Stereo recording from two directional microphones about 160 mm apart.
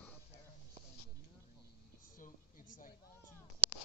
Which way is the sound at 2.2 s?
55° left (ahead or behind).